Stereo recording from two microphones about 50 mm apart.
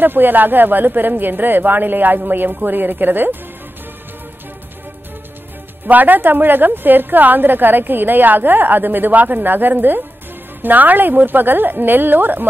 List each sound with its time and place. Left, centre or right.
0.0 s a woman's voice: right
5.9 s a woman's voice: right